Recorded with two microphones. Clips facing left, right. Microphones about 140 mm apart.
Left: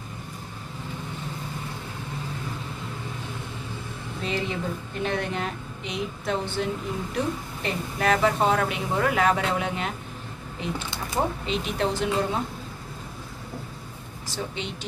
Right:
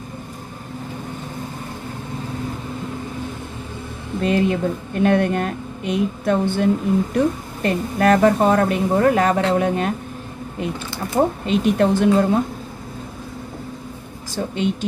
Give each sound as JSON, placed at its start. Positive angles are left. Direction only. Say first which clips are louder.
{"t": 4.2, "sound": "a woman's voice", "louder": "right 10 dB", "side_deg": -55}
{"t": 11.1, "sound": "a woman's voice", "louder": "right 8 dB", "side_deg": -50}
{"t": 14.3, "sound": "a woman's voice", "louder": "right 10 dB", "side_deg": -50}